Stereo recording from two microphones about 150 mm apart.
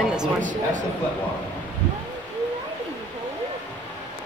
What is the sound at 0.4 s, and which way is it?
Speech, 55° right (ahead or behind).